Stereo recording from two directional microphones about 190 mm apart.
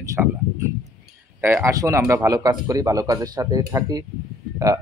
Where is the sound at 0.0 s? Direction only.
15° right (ahead or behind).